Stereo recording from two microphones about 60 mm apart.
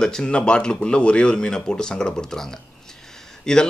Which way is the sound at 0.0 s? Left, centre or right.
Centre.